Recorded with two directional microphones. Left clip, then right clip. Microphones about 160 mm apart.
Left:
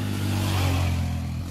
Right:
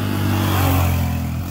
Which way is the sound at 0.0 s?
25° left (ahead or behind).